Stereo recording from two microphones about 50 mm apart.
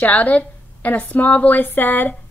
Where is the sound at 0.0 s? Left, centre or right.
Left.